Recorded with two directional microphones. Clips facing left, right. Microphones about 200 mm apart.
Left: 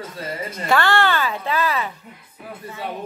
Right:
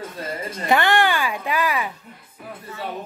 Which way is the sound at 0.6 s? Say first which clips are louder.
Even; 20° right (ahead or behind).